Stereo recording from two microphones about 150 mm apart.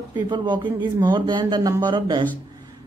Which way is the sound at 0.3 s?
30° right (ahead or behind).